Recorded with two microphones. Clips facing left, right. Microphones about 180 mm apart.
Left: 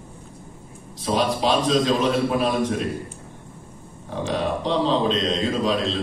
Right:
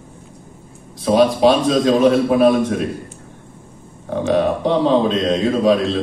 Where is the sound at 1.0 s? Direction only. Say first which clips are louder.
Right 9 dB; 55° right (ahead or behind).